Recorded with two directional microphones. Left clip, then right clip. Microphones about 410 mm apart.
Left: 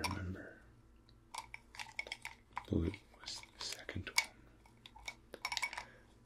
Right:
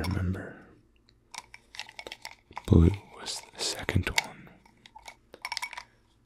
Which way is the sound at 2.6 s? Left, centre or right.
Right.